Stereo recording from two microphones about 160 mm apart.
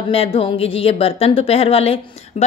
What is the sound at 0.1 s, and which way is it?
Speech, 35° left (ahead or behind).